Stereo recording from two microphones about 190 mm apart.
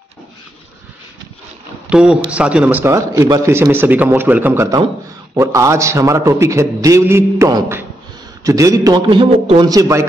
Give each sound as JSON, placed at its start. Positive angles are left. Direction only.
{"t": 1.9, "sound": "a man's voice", "side_deg": -5}